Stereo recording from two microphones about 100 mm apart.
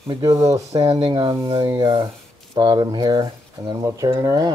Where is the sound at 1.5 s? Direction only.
60° right (ahead or behind); by 4.5 s 35° right (ahead or behind).